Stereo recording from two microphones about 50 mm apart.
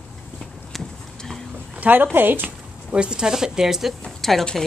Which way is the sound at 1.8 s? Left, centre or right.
Right.